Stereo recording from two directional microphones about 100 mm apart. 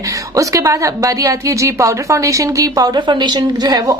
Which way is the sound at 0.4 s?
35° right (ahead or behind).